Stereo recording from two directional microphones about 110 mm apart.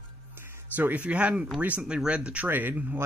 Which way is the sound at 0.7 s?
15° right (ahead or behind).